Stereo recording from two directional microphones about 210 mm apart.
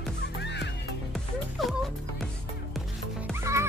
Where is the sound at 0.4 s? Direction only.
55° left (ahead or behind).